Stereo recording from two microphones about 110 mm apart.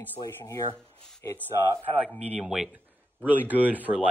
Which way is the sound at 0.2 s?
35° left (ahead or behind).